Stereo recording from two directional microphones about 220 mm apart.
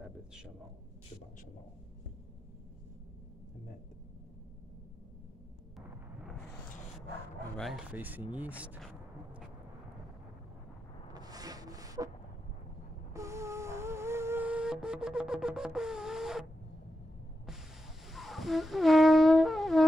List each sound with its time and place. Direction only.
7.5 s speech: centre (ahead or behind)
11.1 s rub: 15° right (ahead or behind)
13.1 s a sound: 15° right (ahead or behind)
18.0 s wind instrument: centre (ahead or behind)